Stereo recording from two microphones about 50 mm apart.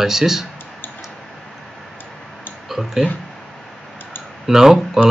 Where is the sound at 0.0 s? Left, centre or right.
Centre.